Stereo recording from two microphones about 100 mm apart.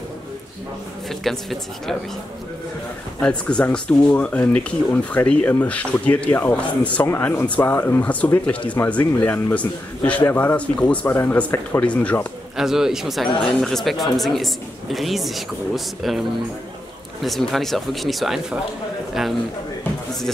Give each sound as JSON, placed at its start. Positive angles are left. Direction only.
{"t": 1.2, "sound": "speech", "side_deg": 5}
{"t": 3.2, "sound": "a man's voice", "side_deg": 10}
{"t": 12.5, "sound": "speech", "side_deg": -5}
{"t": 17.2, "sound": "speech", "side_deg": 0}